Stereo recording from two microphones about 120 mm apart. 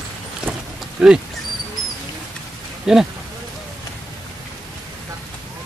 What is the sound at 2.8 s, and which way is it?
Speech, 5° right (ahead or behind).